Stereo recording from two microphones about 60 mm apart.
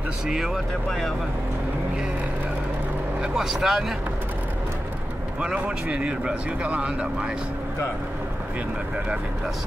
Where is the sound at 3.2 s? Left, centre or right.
Centre.